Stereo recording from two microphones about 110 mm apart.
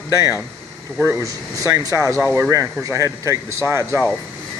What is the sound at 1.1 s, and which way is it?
Speech, 30° right (ahead or behind).